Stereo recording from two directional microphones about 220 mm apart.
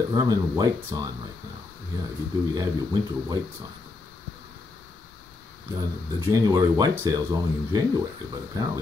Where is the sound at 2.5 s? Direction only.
15° right (ahead or behind).